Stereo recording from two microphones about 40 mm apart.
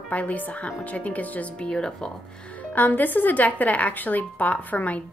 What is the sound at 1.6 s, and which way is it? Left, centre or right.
Speech, left.